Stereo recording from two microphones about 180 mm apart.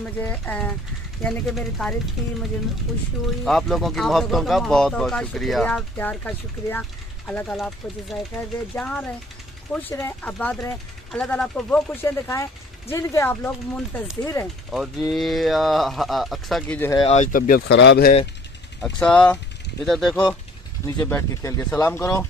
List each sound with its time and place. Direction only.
0.2 s speech: 10° left (ahead or behind)
3.4 s speech: centre (ahead or behind)
14.7 s speech: centre (ahead or behind)
17.1 s speech: 45° left (ahead or behind); by 18.1 s 70° left (ahead or behind)
18.8 s speech: 5° left (ahead or behind)
20.8 s speech: 15° left (ahead or behind)